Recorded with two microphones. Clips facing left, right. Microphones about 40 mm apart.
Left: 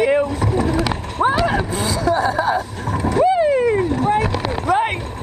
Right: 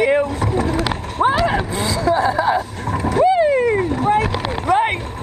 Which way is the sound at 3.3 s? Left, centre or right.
Centre.